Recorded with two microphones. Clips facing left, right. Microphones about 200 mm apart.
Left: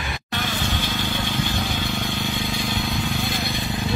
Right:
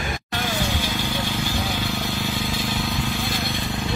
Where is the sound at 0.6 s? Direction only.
10° right (ahead or behind).